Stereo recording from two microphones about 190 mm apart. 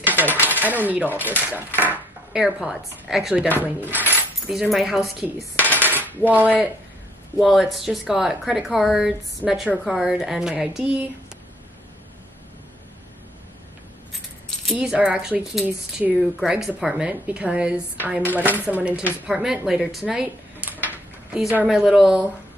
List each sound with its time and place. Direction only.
0.0 s coin: 10° right (ahead or behind)
1.3 s speech: 10° right (ahead or behind)
3.4 s speech: 10° left (ahead or behind)
3.9 s speech: 10° right (ahead or behind)
5.7 s cutlery: 10° right (ahead or behind)
7.3 s speech: centre (ahead or behind)
14.7 s speech: 5° right (ahead or behind)